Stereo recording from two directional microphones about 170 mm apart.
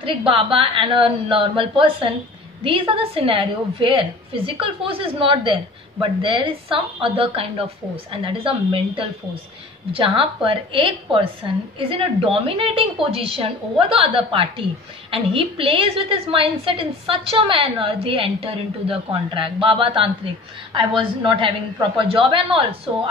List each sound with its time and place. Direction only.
0.3 s a woman's voice: 30° right (ahead or behind)
21.4 s a woman's voice: 30° right (ahead or behind)